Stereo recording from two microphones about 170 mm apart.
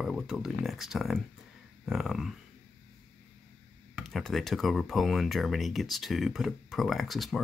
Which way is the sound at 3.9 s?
Centre (ahead or behind).